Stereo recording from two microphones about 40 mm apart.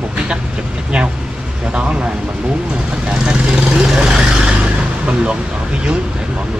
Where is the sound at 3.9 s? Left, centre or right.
Centre.